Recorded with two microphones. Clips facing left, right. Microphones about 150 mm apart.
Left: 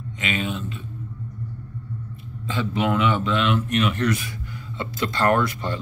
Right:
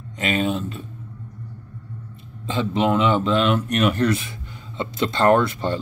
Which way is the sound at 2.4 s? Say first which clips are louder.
Right 3 dB; 30° right (ahead or behind).